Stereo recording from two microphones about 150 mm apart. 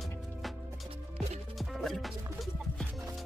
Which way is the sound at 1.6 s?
Centre (ahead or behind).